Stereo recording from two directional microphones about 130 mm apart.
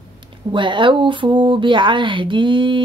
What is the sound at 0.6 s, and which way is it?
Speech, 40° right (ahead or behind).